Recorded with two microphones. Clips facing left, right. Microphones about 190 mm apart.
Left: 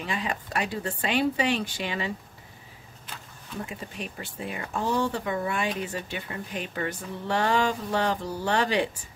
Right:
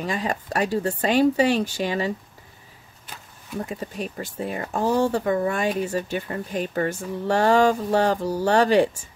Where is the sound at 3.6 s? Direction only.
40° right (ahead or behind).